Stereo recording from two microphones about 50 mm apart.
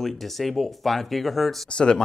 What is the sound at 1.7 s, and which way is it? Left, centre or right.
Speech, centre.